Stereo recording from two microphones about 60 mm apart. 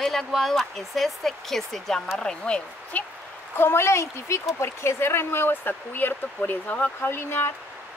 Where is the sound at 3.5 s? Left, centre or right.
Left.